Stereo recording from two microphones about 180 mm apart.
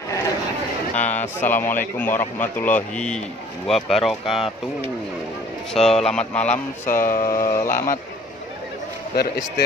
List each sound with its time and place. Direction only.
0.9 s a man's voice: 10° left (ahead or behind)
5.7 s a man's voice: 5° left (ahead or behind)
6.9 s mantra: 50° left (ahead or behind)
7.2 s a man's voice: 15° left (ahead or behind)
9.1 s a man's voice: 60° left (ahead or behind)